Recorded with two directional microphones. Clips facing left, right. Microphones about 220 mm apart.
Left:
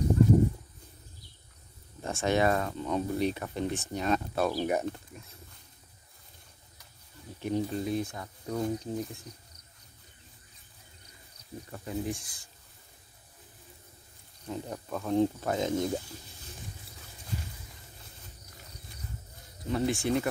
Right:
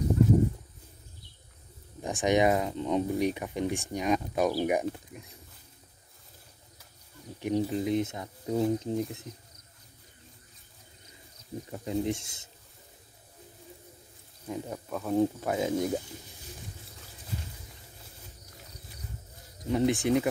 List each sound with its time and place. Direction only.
2.0 s speech: 15° right (ahead or behind)
7.3 s speech: 15° right (ahead or behind)
11.7 s speech: 20° right (ahead or behind)
14.4 s speech: 5° right (ahead or behind)
19.6 s speech: 15° right (ahead or behind)